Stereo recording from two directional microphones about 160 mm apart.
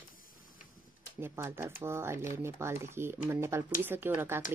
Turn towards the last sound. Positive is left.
turn(degrees=-15)  # may be behind; listen again after turning